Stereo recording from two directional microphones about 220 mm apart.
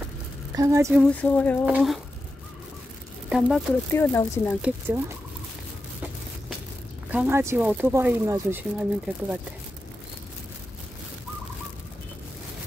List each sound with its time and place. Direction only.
0.6 s speech: 15° right (ahead or behind)
1.1 s speech: 5° left (ahead or behind)
3.3 s speech: centre (ahead or behind)
3.9 s speech: 10° left (ahead or behind)
4.6 s speech: 5° right (ahead or behind)
7.1 s speech: 10° right (ahead or behind)